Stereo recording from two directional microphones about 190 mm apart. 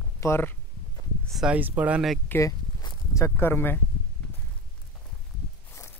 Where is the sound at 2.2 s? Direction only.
15° left (ahead or behind).